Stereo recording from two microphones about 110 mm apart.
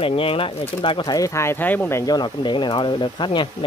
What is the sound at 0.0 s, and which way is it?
Speech, 60° left (ahead or behind).